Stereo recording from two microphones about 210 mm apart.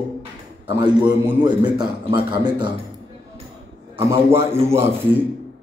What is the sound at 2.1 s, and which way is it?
Speech, 20° right (ahead or behind).